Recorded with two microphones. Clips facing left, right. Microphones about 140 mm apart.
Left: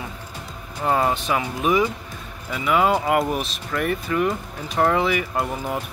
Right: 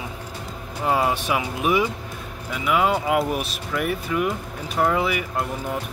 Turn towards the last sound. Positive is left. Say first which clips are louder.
# left 2 dB
turn(degrees=-5)  # may be behind; listen again after turning